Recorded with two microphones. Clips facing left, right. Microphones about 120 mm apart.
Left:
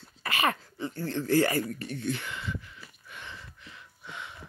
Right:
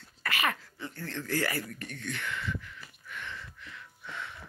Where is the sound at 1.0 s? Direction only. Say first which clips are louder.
Left 7 dB; 25° left (ahead or behind).